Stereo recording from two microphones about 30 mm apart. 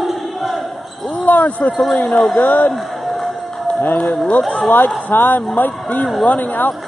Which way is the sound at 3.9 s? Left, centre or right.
Left.